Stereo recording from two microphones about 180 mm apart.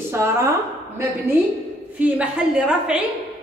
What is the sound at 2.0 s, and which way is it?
A woman's voice, 5° right (ahead or behind).